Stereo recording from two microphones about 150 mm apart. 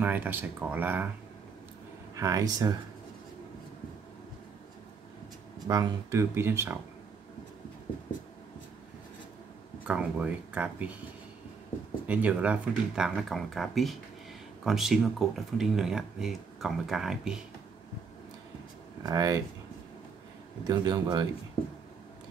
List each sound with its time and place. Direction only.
0.0 s speech: 10° right (ahead or behind)
2.1 s speech: 20° right (ahead or behind)
5.7 s speech: 25° right (ahead or behind)
9.8 s speech: 10° right (ahead or behind)
12.1 s speech: 10° right (ahead or behind)
19.0 s speech: 25° right (ahead or behind)
20.6 s speech: 30° right (ahead or behind)